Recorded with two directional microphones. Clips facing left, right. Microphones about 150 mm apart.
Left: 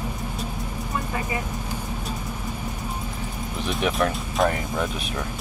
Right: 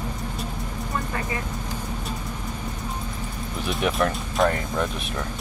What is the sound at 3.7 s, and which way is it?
Speech, centre (ahead or behind).